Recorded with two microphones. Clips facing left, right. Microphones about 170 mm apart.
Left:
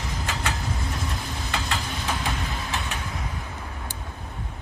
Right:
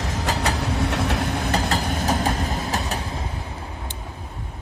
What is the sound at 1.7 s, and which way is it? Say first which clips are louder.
Train: right 7 dB; 45° right (ahead or behind).